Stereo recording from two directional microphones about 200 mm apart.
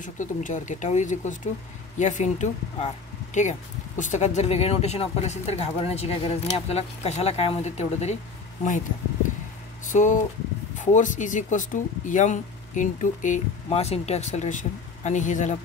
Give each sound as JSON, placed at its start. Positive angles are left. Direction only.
{"t": 0.0, "sound": "speech", "side_deg": 40}
{"t": 9.9, "sound": "speech", "side_deg": 40}